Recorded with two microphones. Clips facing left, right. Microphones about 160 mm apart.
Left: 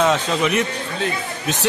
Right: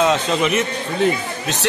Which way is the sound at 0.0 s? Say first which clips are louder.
Right 1 dB; centre (ahead or behind).